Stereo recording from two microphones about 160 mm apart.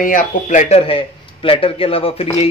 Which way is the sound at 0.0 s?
55° left (ahead or behind).